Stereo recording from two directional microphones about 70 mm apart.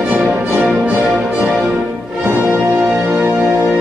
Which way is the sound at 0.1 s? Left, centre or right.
Centre.